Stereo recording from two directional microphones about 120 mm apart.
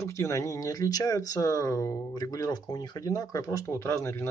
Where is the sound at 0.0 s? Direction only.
25° left (ahead or behind).